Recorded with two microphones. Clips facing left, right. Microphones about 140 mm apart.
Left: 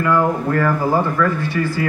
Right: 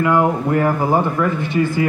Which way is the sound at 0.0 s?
20° right (ahead or behind).